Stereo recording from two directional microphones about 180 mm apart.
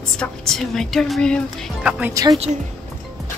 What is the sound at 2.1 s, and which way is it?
Speech, 20° right (ahead or behind).